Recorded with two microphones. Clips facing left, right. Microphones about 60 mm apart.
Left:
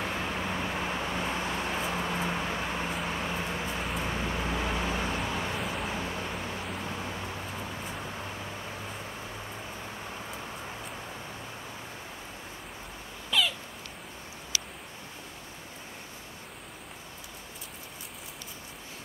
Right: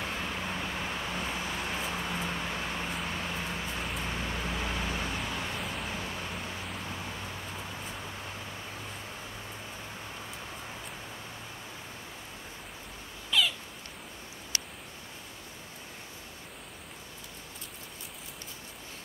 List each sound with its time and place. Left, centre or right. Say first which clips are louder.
0.0 s vehicle: left 3 dB; centre
5.6 s vehicle: left 3 dB; centre
5.9 s vehicle: left 3 dB; centre
6.4 s a sound: left 3 dB; centre
6.8 s vehicle: left 3 dB; centre
13.3 s cat: even; centre